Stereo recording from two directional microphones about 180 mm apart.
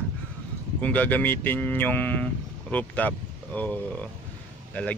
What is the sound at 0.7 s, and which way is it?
Speech, 10° left (ahead or behind).